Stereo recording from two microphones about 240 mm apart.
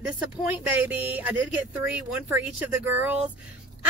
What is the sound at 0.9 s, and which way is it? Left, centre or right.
Speech, centre.